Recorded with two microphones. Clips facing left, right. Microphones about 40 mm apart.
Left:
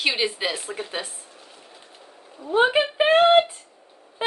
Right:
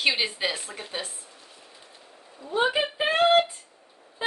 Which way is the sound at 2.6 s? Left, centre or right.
Left.